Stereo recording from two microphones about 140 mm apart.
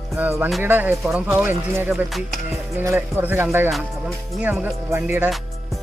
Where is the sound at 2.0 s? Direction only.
Centre (ahead or behind).